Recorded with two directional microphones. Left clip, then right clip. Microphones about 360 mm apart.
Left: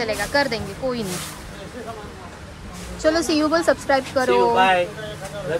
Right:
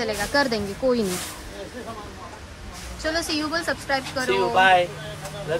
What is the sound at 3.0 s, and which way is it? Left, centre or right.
Speech, centre.